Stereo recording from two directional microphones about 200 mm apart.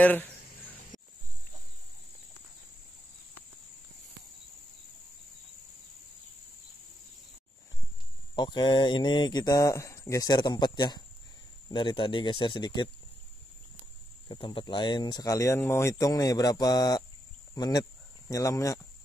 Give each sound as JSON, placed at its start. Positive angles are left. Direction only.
{"t": 0.0, "sound": "speech", "side_deg": 10}
{"t": 8.4, "sound": "speech", "side_deg": 20}
{"t": 14.3, "sound": "speech", "side_deg": 25}